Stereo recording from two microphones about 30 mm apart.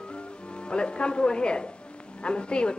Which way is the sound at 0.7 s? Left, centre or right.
Left.